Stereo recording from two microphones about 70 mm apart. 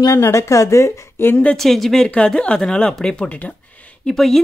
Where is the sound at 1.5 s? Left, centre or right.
Centre.